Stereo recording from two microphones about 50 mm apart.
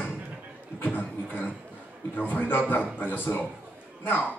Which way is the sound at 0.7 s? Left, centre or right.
Left.